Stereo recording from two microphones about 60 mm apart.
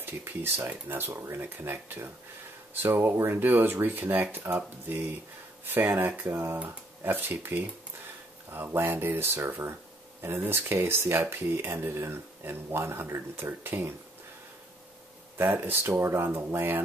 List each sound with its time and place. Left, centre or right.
0.0 s speech: right
5.7 s speech: right
15.3 s speech: right